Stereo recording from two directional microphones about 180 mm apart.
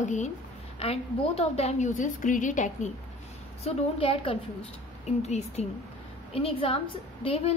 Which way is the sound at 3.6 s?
30° left (ahead or behind).